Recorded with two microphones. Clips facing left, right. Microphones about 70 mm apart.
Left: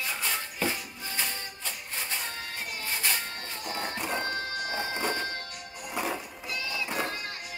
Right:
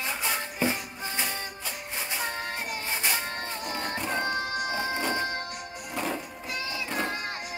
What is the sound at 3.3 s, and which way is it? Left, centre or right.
Music, right.